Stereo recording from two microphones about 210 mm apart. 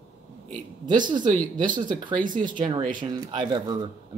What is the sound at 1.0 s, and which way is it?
Speech, 20° right (ahead or behind).